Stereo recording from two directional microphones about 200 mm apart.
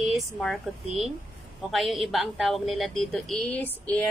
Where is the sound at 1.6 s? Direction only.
Centre (ahead or behind).